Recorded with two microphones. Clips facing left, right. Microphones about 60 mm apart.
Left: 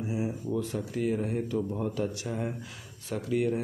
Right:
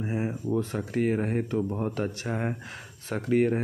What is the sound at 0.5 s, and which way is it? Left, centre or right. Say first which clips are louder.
Speech: right 3 dB; right.